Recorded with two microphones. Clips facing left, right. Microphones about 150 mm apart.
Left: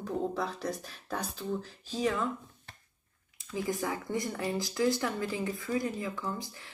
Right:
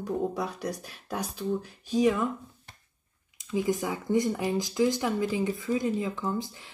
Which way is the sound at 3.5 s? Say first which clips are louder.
Right 5 dB; 20° right (ahead or behind).